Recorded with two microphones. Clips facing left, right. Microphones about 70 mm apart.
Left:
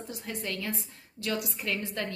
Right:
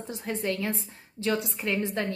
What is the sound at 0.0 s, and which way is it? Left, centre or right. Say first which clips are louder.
A woman's voice: right 6 dB; right.